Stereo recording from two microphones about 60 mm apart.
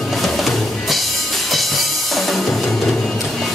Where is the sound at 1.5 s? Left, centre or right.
Centre.